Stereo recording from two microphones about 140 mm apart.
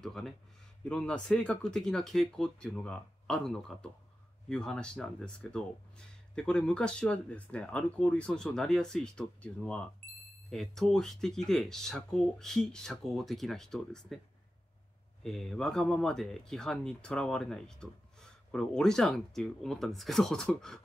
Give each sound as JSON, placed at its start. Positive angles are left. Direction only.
{"t": 0.0, "sound": "speech", "side_deg": 5}
{"t": 15.2, "sound": "speech", "side_deg": 5}